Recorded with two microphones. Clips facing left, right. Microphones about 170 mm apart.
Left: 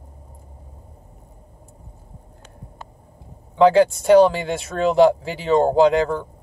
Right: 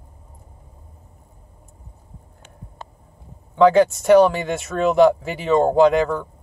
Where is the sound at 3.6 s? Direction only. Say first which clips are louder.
Even; 25° left (ahead or behind).